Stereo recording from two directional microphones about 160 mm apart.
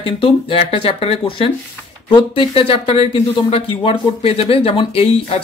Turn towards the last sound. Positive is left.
turn(degrees=35)  # may be behind; listen again after turning